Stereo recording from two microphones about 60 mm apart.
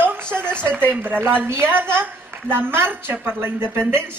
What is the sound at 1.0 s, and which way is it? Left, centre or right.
Speech, right.